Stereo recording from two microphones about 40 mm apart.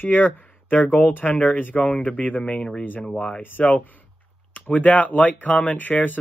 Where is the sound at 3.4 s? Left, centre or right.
Left.